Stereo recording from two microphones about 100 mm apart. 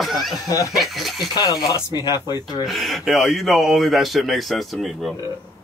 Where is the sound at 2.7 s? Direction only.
Centre (ahead or behind).